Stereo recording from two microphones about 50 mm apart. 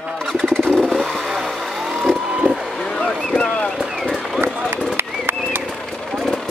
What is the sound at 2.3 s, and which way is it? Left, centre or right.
Vehicle, right.